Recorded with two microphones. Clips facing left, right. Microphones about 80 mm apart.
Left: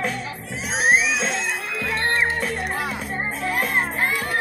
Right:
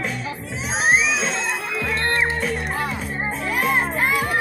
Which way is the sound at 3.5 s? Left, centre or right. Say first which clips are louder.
Right 2 dB; left.